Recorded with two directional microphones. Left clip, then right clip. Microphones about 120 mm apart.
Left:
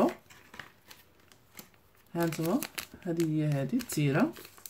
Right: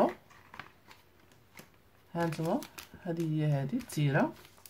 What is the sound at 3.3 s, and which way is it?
Speech, 20° right (ahead or behind).